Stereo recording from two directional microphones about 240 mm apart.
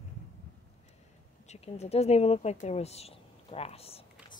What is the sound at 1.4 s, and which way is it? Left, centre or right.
A woman's voice, left.